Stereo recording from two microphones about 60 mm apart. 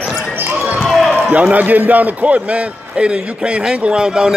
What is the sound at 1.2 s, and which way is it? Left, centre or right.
A man's voice, right.